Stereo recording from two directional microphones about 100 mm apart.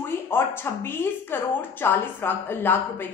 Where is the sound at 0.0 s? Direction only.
20° left (ahead or behind).